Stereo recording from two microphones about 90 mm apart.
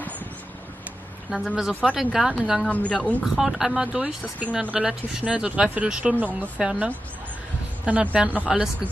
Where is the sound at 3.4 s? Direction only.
5° right (ahead or behind).